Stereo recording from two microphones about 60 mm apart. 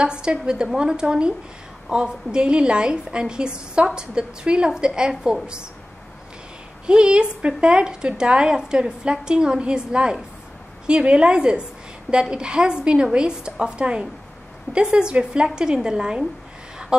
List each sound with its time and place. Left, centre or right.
0.0 s a woman's voice: centre
6.9 s a woman's voice: centre